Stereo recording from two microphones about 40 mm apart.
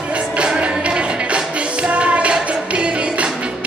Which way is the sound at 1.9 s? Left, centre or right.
Right.